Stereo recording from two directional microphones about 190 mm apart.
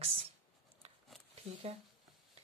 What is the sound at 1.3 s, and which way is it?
Speech, 30° right (ahead or behind).